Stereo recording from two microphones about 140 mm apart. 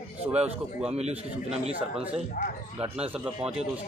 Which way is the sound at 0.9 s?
50° right (ahead or behind).